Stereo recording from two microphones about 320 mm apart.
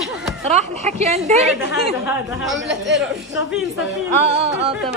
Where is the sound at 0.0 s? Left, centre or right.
Centre.